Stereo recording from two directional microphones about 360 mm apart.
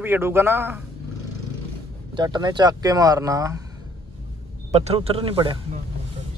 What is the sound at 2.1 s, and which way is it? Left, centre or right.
Speech, centre.